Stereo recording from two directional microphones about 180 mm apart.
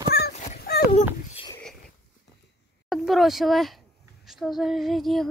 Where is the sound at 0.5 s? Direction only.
60° left (ahead or behind).